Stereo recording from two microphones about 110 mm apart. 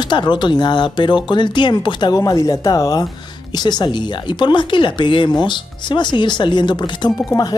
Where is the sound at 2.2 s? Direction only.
30° left (ahead or behind).